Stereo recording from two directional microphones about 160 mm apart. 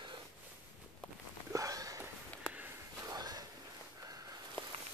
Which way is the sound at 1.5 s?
20° right (ahead or behind).